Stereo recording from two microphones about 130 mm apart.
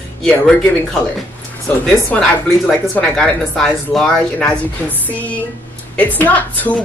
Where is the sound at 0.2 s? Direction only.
5° left (ahead or behind).